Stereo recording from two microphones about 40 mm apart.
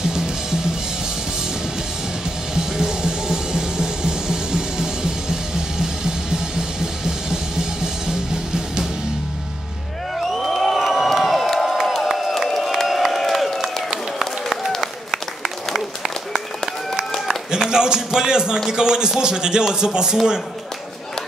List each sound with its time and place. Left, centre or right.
2.5 s music: centre
10.1 s crowd: centre
14.2 s applause: centre
17.6 s music: centre
18.7 s speech: centre